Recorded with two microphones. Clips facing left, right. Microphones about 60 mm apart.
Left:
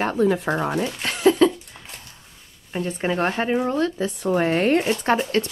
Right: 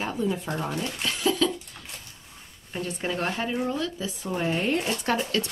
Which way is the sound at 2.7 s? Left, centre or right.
Left.